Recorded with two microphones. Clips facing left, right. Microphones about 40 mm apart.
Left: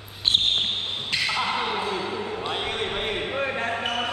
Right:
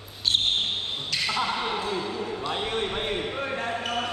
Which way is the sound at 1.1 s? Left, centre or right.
Left.